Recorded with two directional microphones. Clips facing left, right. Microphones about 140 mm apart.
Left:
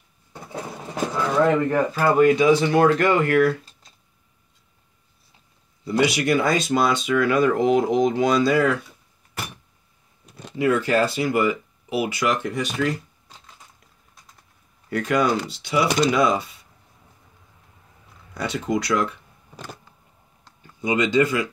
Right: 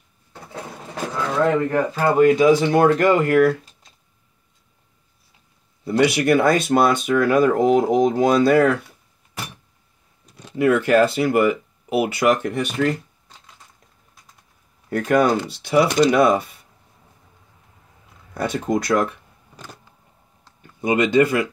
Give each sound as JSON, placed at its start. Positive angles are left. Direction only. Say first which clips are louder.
{"t": 1.1, "sound": "a sound", "louder": "even", "side_deg": 5}
{"t": 1.9, "sound": "speech", "louder": "right 1 dB", "side_deg": -20}
{"t": 2.1, "sound": "speech", "louder": "right 3 dB", "side_deg": -45}
{"t": 2.9, "sound": "speech", "louder": "right 3 dB", "side_deg": -40}
{"t": 6.0, "sound": "speech", "louder": "right 5 dB", "side_deg": -55}
{"t": 10.5, "sound": "speech", "louder": "right 4 dB", "side_deg": -55}
{"t": 14.9, "sound": "speech", "louder": "right 4 dB", "side_deg": -45}
{"t": 18.3, "sound": "speech", "louder": "right 3 dB", "side_deg": -50}
{"t": 20.8, "sound": "speech", "louder": "right 3 dB", "side_deg": -55}